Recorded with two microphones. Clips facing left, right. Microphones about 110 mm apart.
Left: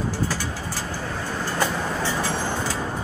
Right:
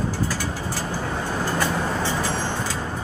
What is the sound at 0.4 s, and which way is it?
Vehicle, 15° right (ahead or behind).